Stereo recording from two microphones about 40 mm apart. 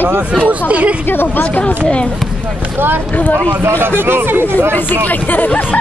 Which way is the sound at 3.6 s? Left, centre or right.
Right.